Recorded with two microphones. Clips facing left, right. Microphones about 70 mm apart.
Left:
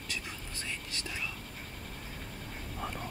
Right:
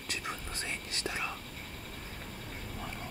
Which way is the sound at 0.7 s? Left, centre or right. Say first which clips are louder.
Right 2 dB; right.